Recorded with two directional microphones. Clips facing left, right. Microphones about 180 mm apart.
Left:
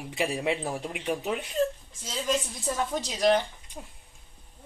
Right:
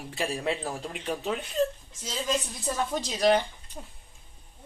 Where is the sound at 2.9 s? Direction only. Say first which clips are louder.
Right 1 dB; 5° right (ahead or behind).